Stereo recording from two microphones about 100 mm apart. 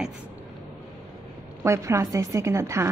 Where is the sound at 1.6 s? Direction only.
30° right (ahead or behind).